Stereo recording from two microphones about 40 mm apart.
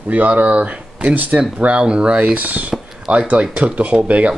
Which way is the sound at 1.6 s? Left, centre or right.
Right.